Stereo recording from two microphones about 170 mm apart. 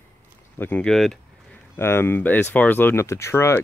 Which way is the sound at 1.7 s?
15° left (ahead or behind).